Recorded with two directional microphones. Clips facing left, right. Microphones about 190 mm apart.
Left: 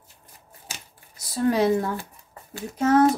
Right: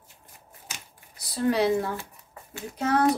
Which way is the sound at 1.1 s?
45° left (ahead or behind).